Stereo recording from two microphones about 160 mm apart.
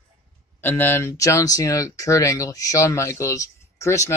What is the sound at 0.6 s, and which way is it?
Speech, 15° left (ahead or behind).